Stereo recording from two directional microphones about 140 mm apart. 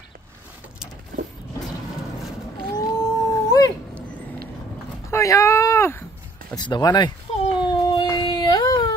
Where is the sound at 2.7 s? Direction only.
30° left (ahead or behind).